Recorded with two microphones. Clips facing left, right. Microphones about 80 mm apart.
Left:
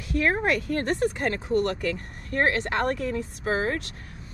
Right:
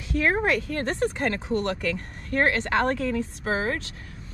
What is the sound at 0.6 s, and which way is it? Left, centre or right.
Speech, left.